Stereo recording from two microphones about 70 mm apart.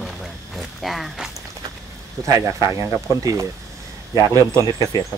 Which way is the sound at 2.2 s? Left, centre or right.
Right.